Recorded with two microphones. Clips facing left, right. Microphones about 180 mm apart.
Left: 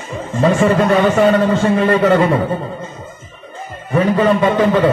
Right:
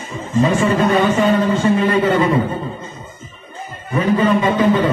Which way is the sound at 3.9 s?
60° left (ahead or behind).